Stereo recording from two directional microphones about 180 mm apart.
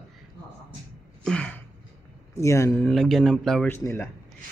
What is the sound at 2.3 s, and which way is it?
Speech, 15° left (ahead or behind).